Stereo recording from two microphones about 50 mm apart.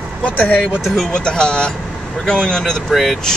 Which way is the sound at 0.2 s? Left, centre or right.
Left.